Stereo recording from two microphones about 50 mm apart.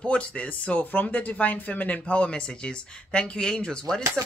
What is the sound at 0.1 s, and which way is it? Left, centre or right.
Speech, left.